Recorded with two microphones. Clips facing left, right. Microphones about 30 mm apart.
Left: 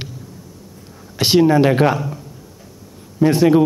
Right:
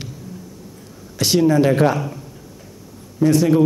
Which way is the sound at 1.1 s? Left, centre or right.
Left.